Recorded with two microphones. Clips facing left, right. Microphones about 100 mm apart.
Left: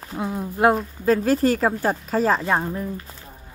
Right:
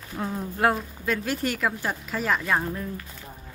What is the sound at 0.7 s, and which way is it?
Speech, 35° left (ahead or behind).